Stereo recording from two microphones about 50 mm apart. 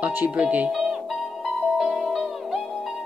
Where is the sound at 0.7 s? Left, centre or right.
Centre.